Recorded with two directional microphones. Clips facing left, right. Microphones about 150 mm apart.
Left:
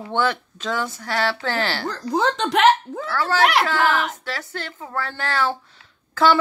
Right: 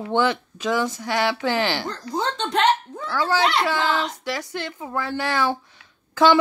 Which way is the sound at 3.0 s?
15° right (ahead or behind).